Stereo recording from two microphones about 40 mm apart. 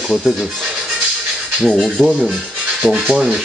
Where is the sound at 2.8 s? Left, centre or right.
Right.